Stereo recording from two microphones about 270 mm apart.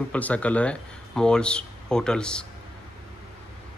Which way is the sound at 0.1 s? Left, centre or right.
Centre.